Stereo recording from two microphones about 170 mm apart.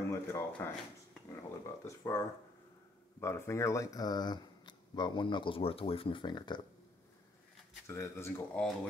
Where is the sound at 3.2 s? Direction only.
15° left (ahead or behind).